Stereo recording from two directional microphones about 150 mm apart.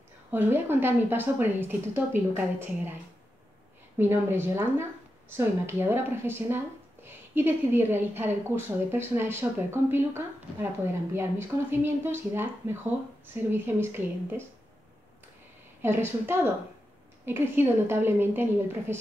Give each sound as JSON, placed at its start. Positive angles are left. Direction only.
{"t": 0.3, "sound": "speech", "side_deg": -15}
{"t": 4.0, "sound": "speech", "side_deg": -15}
{"t": 15.8, "sound": "speech", "side_deg": -15}